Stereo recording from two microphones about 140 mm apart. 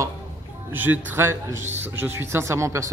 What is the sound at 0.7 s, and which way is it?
Speech, 15° right (ahead or behind).